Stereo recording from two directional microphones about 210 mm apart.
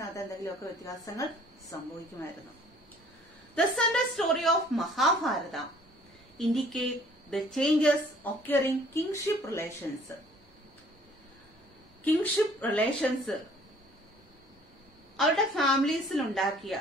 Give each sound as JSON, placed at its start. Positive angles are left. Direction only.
{"t": 0.1, "sound": "a woman's voice", "side_deg": 15}
{"t": 3.5, "sound": "a woman's voice", "side_deg": 0}
{"t": 12.0, "sound": "a woman's voice", "side_deg": 10}
{"t": 15.1, "sound": "a woman's voice", "side_deg": 0}